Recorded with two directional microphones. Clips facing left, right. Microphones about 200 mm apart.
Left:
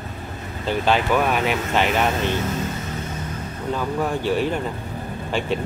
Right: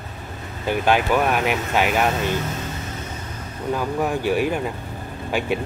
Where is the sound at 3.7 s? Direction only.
10° right (ahead or behind).